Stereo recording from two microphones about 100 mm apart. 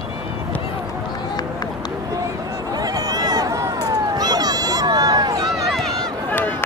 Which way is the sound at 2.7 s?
40° right (ahead or behind).